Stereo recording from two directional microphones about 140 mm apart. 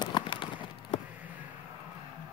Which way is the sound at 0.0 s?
35° left (ahead or behind).